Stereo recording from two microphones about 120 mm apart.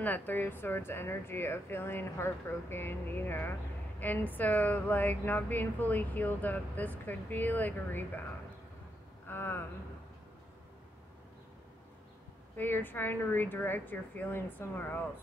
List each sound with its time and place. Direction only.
0.0 s speech: 15° left (ahead or behind)
9.3 s a sound: 20° left (ahead or behind)
12.5 s speech: 15° left (ahead or behind)